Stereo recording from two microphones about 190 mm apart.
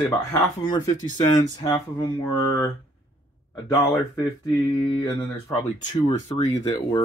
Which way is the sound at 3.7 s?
20° left (ahead or behind).